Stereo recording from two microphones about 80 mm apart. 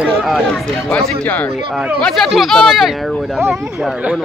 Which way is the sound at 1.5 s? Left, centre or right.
Centre.